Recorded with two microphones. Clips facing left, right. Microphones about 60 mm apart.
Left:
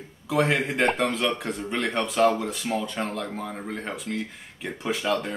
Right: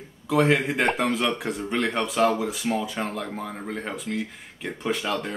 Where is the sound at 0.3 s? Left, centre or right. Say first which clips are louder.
Right 2 dB; centre.